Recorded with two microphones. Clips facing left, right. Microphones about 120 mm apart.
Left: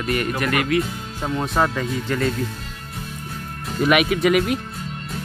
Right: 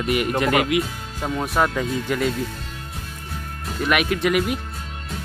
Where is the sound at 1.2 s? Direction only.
5° right (ahead or behind).